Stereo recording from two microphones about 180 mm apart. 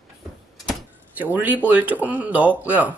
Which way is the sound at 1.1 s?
10° right (ahead or behind).